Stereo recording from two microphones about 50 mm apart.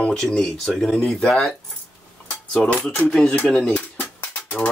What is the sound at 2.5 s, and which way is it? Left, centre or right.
Speech, centre.